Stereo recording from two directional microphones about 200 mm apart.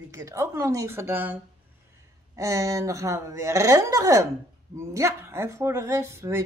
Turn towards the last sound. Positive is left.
turn(degrees=-15)  # may be behind; listen again after turning